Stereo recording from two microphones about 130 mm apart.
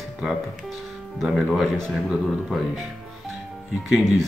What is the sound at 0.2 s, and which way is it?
Speech, 5° right (ahead or behind).